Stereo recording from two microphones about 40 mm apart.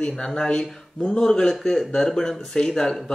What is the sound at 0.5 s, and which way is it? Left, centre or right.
Speech, left.